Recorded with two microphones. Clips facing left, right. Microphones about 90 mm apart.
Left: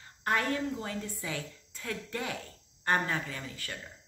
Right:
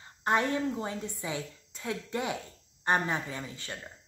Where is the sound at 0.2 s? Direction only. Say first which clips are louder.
Right 3 dB; 25° right (ahead or behind).